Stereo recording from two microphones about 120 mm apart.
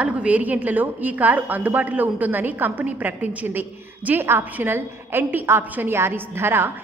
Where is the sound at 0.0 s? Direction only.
10° right (ahead or behind).